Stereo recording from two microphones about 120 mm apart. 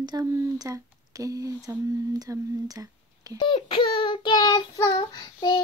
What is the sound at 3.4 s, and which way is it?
Child singing, 40° left (ahead or behind).